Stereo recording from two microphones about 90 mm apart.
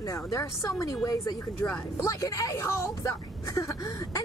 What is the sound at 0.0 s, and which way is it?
Speech, 40° left (ahead or behind).